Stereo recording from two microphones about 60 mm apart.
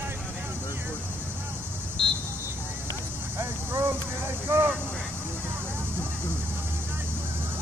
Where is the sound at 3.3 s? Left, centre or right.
Right.